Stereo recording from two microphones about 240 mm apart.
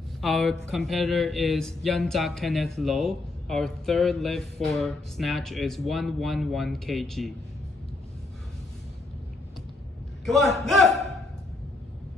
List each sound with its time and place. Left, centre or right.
0.2 s speech: centre
10.2 s speech: centre